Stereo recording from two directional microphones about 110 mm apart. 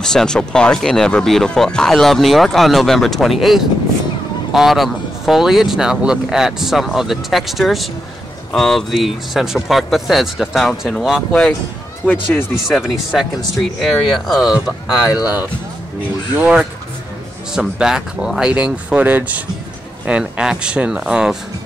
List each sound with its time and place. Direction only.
0.0 s speech: 5° left (ahead or behind)
12.6 s speech: 5° right (ahead or behind)
14.5 s speech: 35° left (ahead or behind)
16.3 s speech: 10° right (ahead or behind)